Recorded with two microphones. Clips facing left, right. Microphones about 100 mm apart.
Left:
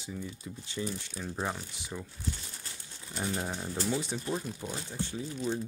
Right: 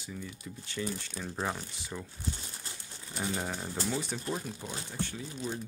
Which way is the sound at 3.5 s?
5° right (ahead or behind).